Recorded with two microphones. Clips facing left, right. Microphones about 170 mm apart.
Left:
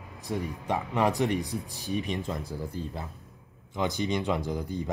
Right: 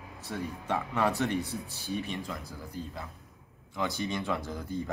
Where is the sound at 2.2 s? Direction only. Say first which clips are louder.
Left 6 dB; 25° left (ahead or behind).